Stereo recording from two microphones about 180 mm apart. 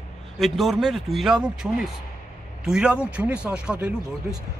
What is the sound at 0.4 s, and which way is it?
Speech, centre (ahead or behind).